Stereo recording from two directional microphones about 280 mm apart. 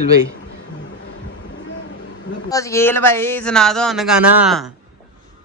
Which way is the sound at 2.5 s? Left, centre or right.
Centre.